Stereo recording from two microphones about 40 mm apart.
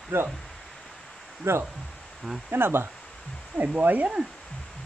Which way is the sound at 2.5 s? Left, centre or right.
Right.